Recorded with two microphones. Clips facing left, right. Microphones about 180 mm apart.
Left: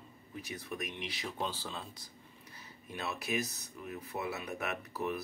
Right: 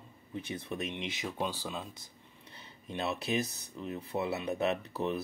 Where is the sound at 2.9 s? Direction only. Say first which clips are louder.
Right 4 dB; 25° right (ahead or behind).